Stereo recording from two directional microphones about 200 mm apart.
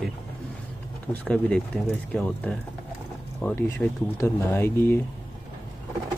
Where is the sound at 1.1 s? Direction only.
5° left (ahead or behind).